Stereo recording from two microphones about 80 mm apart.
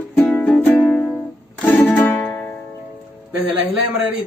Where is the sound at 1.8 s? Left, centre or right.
Left.